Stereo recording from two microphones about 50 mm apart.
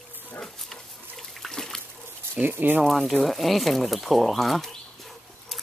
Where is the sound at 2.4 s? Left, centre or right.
Right.